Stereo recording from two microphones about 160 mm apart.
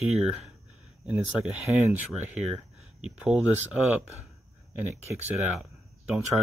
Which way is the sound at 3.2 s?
10° right (ahead or behind).